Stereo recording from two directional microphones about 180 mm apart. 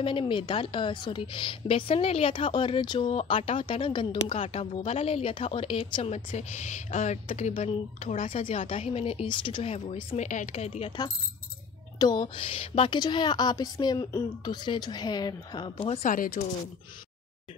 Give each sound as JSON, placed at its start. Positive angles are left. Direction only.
{"t": 0.0, "sound": "a woman's voice", "side_deg": 30}
{"t": 10.2, "sound": "a woman's voice", "side_deg": 45}
{"t": 12.0, "sound": "a woman's voice", "side_deg": 25}
{"t": 16.0, "sound": "speech", "side_deg": 50}